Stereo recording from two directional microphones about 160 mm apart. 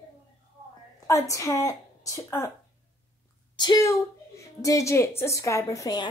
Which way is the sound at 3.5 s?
25° left (ahead or behind).